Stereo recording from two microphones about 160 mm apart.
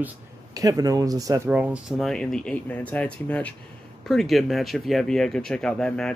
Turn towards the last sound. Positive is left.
turn(degrees=5)  # may be behind; listen again after turning